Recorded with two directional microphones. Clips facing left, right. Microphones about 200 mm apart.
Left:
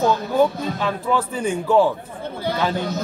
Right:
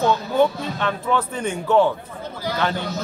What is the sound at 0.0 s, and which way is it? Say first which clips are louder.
A man's voice: left 1 dB; 5° left (ahead or behind).